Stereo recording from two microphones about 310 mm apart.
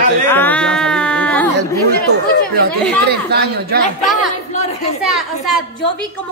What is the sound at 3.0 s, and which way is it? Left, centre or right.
Speech, right.